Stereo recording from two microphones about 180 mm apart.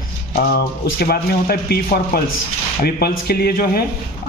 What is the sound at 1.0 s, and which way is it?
Speech, 60° left (ahead or behind).